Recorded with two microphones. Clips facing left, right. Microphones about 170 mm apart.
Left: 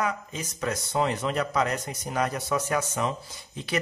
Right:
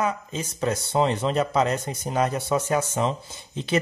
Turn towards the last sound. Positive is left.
turn(degrees=-25)  # may be behind; listen again after turning